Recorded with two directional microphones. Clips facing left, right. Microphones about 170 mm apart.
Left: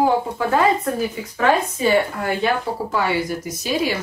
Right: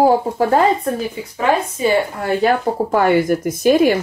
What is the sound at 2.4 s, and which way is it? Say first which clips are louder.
Speech: right 8 dB; 50° right (ahead or behind).